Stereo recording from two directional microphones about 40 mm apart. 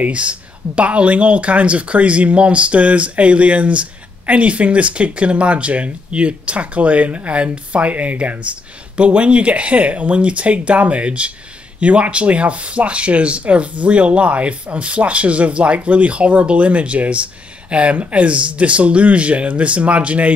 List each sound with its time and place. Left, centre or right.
0.0 s speech: right